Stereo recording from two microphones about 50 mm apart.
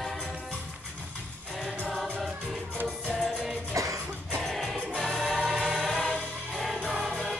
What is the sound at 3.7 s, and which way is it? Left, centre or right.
Music, right.